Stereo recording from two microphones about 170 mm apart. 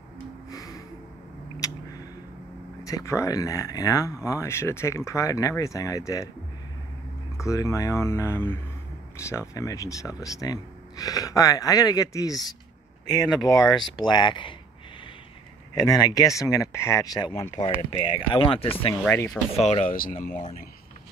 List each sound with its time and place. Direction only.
0.5 s music: 20° left (ahead or behind)
2.8 s speech: 20° left (ahead or behind)
7.3 s speech: 20° left (ahead or behind)
15.7 s speech: 20° left (ahead or behind)
19.0 s speech: 10° left (ahead or behind)
19.5 s speech: 40° left (ahead or behind); by 20.4 s 55° left (ahead or behind)